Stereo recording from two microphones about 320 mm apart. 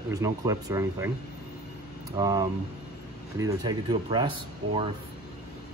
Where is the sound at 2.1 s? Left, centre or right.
Centre.